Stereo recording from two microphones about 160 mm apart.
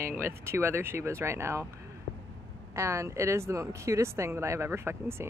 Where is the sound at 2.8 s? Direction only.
20° right (ahead or behind).